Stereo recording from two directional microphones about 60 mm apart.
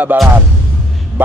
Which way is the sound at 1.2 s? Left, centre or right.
Right.